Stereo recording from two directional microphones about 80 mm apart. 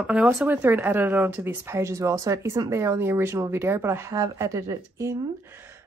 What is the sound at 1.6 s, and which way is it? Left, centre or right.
Speech, right.